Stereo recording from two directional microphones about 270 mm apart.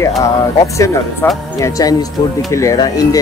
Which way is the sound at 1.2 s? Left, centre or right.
Centre.